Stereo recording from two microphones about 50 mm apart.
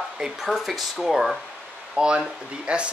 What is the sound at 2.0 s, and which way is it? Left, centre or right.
Speech, centre.